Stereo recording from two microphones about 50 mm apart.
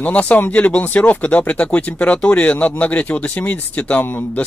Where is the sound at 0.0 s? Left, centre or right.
Left.